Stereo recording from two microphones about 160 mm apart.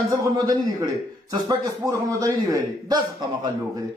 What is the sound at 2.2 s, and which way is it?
Speech, 20° right (ahead or behind).